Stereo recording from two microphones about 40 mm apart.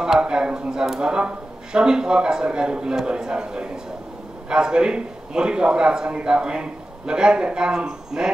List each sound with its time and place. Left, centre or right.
0.0 s a man's voice: centre